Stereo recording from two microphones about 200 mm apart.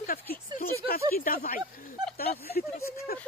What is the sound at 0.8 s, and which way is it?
Speech, 45° left (ahead or behind).